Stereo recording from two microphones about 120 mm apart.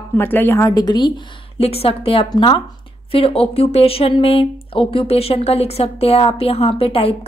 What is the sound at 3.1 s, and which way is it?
A woman's voice, 55° left (ahead or behind).